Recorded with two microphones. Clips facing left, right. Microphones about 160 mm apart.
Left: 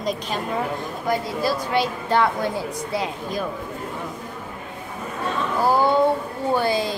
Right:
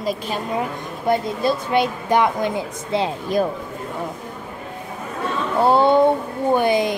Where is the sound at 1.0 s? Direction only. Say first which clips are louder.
Right 4 dB; 20° right (ahead or behind).